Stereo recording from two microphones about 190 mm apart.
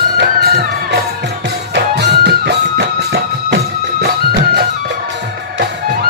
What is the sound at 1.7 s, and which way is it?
Music, 65° right (ahead or behind).